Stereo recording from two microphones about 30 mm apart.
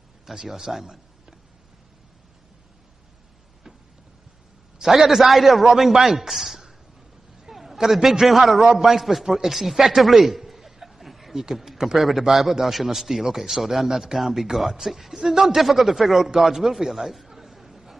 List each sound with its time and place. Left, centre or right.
0.5 s a man's voice: centre
4.8 s a man's voice: centre
5.3 s a man's voice: centre
16.3 s a sound: centre